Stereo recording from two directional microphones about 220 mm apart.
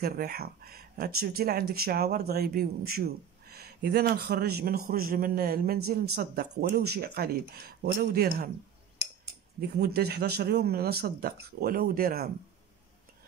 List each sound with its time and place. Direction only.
0.0 s speech: 45° right (ahead or behind)
9.6 s speech: 45° right (ahead or behind)